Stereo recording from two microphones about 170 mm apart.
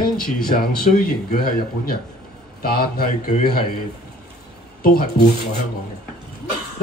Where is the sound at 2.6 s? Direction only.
60° left (ahead or behind).